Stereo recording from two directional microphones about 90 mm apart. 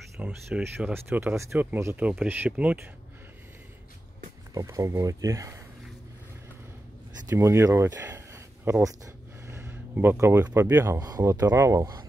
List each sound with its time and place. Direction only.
0.2 s speech: 10° right (ahead or behind)
0.9 s speech: 25° right (ahead or behind)
4.6 s speech: 35° right (ahead or behind)
7.2 s a sound: 35° right (ahead or behind)
10.1 s speech: 30° right (ahead or behind)
11.4 s speech: 20° right (ahead or behind)
11.7 s speech: 45° right (ahead or behind)